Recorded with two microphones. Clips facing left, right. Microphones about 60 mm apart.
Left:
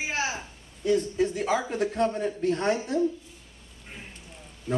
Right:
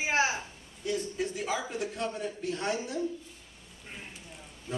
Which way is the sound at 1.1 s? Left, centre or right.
Centre.